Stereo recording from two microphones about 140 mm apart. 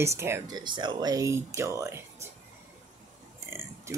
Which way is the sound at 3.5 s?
15° right (ahead or behind).